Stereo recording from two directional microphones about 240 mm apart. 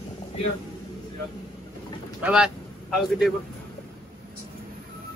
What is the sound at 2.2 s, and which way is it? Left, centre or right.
A man's voice, centre.